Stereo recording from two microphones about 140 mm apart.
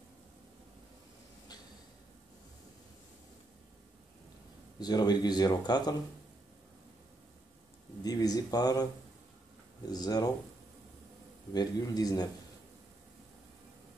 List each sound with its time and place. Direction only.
4.7 s speech: 30° left (ahead or behind)
8.0 s speech: 25° left (ahead or behind)
9.8 s speech: 30° left (ahead or behind)
11.5 s speech: 30° left (ahead or behind)